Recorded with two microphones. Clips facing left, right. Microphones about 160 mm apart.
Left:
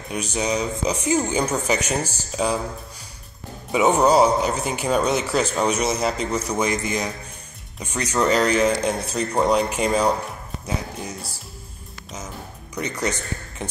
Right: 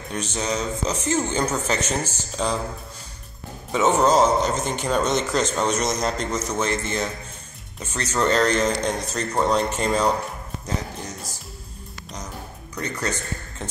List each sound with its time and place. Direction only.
0.1 s speech: 10° left (ahead or behind)
3.7 s speech: 10° left (ahead or behind)
12.7 s speech: 15° left (ahead or behind)